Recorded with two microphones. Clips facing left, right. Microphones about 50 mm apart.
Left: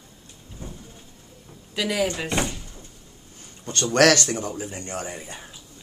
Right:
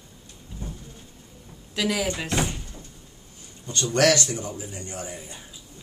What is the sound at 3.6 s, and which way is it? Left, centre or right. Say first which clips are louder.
Speech: left 3 dB; left.